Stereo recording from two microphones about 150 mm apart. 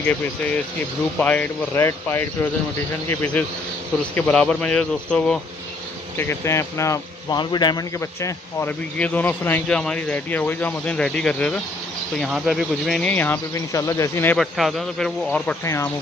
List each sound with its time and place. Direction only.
1.1 s a man's voice: 10° left (ahead or behind)
6.1 s a man's voice: 15° left (ahead or behind)
12.2 s a man's voice: 5° right (ahead or behind); by 14.4 s 15° left (ahead or behind)
14.4 s a man's voice: centre (ahead or behind)
15.6 s speech: 20° left (ahead or behind)